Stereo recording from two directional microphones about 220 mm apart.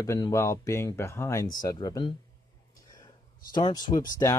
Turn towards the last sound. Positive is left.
turn(degrees=20)  # may be behind; listen again after turning